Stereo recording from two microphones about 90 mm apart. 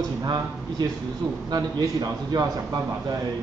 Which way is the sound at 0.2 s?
50° right (ahead or behind).